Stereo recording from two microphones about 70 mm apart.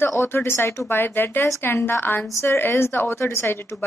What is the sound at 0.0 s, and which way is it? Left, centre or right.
A woman's voice, left.